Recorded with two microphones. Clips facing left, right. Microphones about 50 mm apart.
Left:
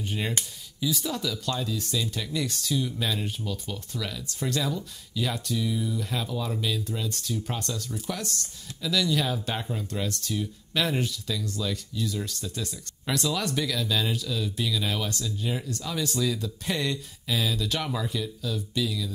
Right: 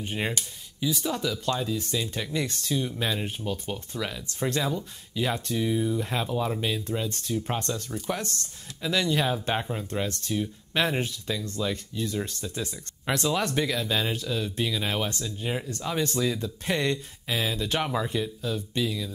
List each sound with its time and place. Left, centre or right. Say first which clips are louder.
0.0 s speech: right 1 dB; right